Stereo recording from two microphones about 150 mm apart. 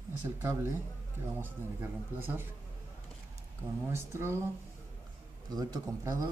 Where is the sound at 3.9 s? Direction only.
15° right (ahead or behind).